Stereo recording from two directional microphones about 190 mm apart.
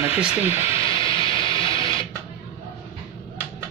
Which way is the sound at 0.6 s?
30° left (ahead or behind).